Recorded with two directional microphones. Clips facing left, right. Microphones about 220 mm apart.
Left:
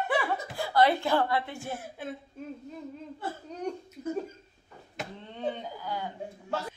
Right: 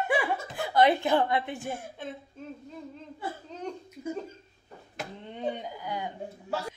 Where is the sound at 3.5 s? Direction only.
10° left (ahead or behind).